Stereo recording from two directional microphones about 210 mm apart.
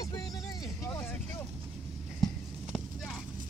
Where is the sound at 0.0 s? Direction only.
15° left (ahead or behind).